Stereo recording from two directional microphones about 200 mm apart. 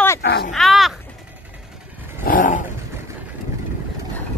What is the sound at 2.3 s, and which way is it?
Dog, 45° left (ahead or behind).